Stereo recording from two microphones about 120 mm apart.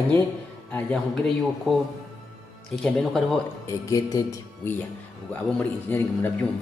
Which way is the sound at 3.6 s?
30° left (ahead or behind).